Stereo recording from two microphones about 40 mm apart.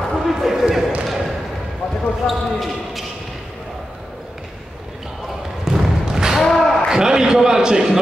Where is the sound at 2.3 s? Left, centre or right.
Centre.